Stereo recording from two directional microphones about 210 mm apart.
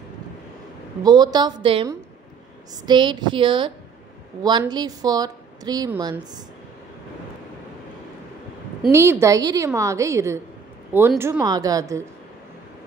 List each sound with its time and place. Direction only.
1.0 s speech: 20° right (ahead or behind)
8.9 s speech: 15° right (ahead or behind)